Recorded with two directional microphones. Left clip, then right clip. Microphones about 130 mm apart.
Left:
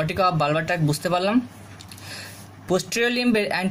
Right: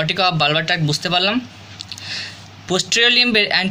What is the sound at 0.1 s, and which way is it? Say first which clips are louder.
Speech: right 4 dB; 35° left (ahead or behind).